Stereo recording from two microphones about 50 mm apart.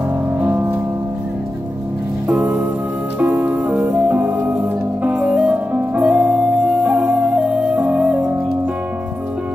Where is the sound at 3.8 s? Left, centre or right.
Right.